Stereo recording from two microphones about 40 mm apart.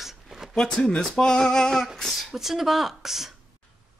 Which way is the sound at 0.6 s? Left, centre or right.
Centre.